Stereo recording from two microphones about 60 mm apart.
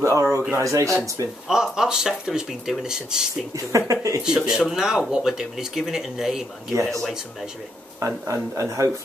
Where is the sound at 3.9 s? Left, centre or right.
Right.